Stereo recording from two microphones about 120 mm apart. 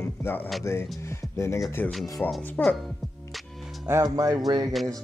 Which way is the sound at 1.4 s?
25° left (ahead or behind).